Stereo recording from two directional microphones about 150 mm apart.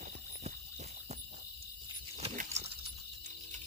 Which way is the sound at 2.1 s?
45° right (ahead or behind).